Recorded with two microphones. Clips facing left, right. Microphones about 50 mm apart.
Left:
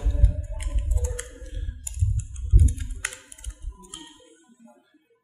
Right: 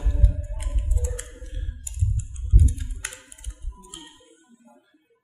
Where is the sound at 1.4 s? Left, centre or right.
Centre.